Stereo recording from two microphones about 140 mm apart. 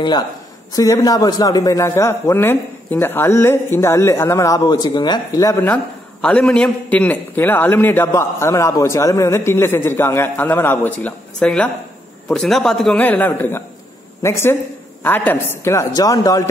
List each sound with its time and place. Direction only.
0.7 s a man's voice: 25° left (ahead or behind)
6.2 s a man's voice: 5° left (ahead or behind); by 16.4 s 25° left (ahead or behind)